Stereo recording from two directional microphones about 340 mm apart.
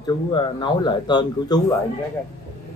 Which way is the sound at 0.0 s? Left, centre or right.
Centre.